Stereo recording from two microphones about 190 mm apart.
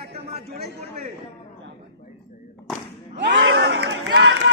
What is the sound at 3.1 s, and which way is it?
Crowd, 65° right (ahead or behind).